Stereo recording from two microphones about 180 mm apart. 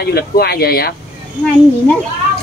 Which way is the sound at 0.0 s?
60° left (ahead or behind).